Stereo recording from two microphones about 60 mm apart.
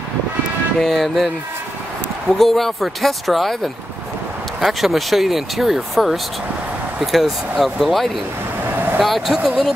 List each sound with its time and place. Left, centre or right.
0.7 s speech: centre